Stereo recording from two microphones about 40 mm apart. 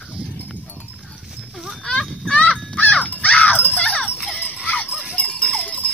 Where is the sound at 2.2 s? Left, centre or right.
Left.